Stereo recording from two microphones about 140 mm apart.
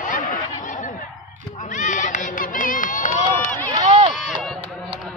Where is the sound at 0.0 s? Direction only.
70° left (ahead or behind).